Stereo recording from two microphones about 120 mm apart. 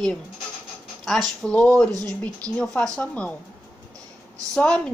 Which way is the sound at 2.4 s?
30° right (ahead or behind).